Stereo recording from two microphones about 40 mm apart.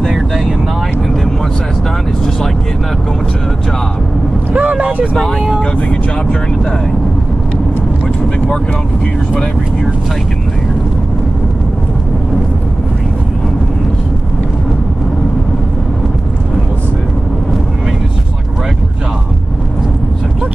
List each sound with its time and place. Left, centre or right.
4.6 s vehicle: right